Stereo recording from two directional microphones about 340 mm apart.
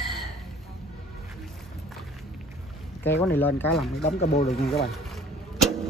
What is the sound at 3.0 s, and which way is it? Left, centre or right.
Speech, centre.